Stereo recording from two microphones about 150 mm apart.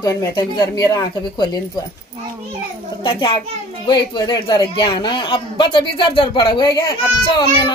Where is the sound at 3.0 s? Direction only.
35° left (ahead or behind).